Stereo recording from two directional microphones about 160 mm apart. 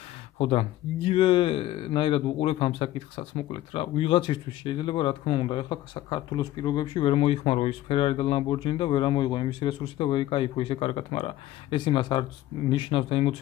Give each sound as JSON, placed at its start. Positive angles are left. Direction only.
{"t": 0.4, "sound": "speech", "side_deg": 35}